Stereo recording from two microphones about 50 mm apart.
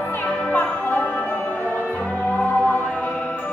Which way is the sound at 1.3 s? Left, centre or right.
Left.